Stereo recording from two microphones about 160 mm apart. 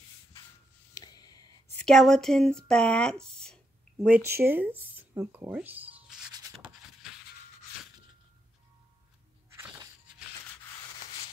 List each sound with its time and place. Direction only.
0.9 s a sound: 25° left (ahead or behind)
1.8 s speech: 5° left (ahead or behind)
4.0 s speech: 10° right (ahead or behind)